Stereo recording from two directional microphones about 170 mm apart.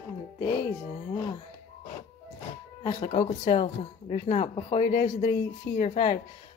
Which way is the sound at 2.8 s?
30° left (ahead or behind).